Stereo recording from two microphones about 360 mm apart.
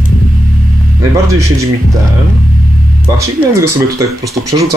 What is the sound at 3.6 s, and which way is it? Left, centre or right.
Speech, centre.